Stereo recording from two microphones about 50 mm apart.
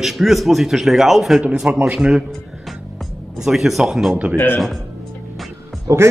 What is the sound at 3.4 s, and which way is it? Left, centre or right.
Speech, centre.